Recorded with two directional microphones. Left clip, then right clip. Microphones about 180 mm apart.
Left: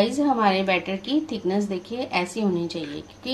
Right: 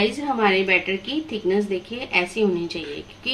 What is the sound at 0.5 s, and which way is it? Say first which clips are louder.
A woman's voice: right 3 dB; 55° left (ahead or behind).